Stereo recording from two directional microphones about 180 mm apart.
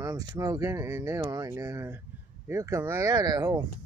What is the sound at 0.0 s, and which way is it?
Speech, 20° right (ahead or behind).